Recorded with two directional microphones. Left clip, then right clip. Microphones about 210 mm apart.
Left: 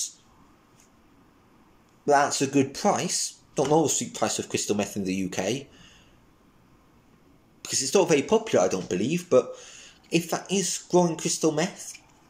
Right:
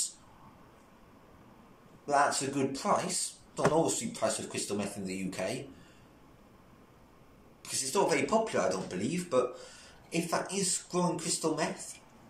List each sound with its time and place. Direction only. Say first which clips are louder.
2.0 s speech: left 6 dB; 45° left (ahead or behind)
7.6 s speech: left 7 dB; 45° left (ahead or behind)